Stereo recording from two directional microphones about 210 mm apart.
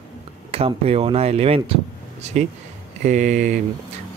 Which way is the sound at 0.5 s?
30° right (ahead or behind).